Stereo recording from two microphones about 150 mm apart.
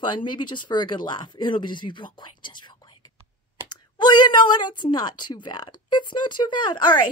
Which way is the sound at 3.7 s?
30° left (ahead or behind).